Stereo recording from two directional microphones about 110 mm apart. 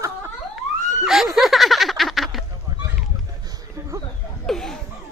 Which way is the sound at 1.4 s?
Centre (ahead or behind).